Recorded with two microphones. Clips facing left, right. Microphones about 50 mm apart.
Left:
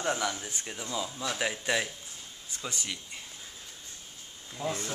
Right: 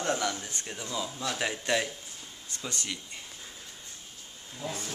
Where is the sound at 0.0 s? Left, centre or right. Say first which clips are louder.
Right 1 dB; centre.